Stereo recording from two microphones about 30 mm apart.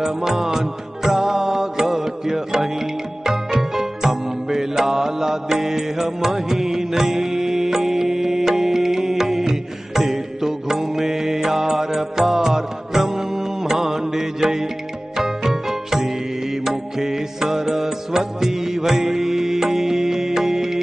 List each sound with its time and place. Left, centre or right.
0.0 s music: centre